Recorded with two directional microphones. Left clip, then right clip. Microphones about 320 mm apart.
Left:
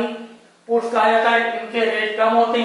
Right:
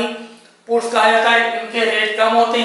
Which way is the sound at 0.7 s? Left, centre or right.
Centre.